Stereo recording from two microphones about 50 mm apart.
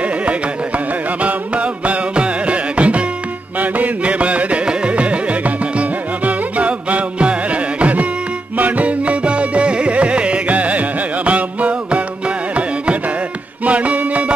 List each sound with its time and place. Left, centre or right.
1.2 s music: right
3.7 s carnatic music: right
5.8 s music: right
13.7 s music: right